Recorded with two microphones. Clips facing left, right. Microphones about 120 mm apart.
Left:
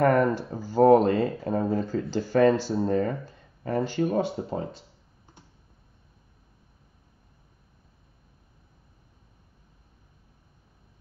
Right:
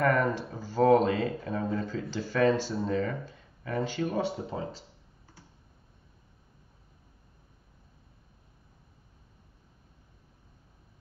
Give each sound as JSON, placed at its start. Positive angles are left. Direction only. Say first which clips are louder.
{"t": 0.0, "sound": "speech", "louder": "left 5 dB", "side_deg": 40}